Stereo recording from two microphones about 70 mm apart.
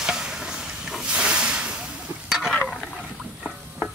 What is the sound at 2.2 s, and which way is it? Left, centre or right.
Stir, centre.